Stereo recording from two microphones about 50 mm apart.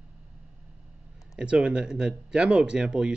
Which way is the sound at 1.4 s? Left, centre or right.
Right.